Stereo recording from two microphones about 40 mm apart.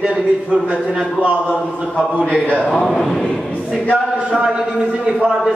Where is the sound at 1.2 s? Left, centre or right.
Right.